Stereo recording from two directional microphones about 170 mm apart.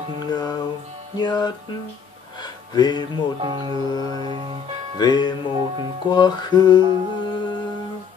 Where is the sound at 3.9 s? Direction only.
25° left (ahead or behind).